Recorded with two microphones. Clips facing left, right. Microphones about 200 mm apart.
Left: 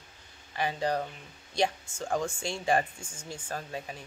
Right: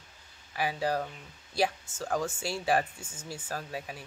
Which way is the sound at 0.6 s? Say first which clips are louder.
Even; 5° right (ahead or behind).